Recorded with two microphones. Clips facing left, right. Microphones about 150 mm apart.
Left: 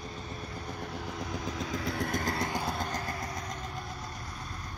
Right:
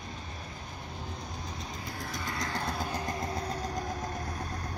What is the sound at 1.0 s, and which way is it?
Train, 90° left.